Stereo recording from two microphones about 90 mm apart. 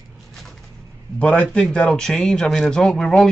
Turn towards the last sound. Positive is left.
turn(degrees=5)  # may be behind; listen again after turning